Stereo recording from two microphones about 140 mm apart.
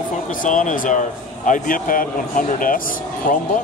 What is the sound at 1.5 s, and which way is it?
A man's voice, 75° left (ahead or behind).